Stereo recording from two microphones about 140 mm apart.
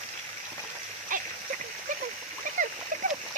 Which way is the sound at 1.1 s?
75° right (ahead or behind).